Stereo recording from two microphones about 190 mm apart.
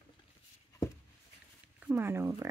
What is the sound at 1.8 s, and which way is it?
Speech, 10° right (ahead or behind).